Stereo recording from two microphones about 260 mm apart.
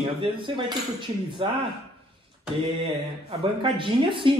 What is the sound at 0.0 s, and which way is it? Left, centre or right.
A man's voice, centre.